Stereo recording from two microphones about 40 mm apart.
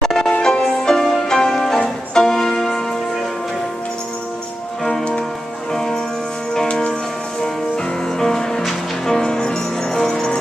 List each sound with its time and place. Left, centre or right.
0.0 s music: centre
5.7 s music: centre
7.4 s music: centre